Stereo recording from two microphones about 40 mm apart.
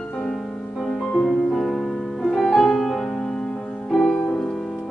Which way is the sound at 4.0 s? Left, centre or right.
Left.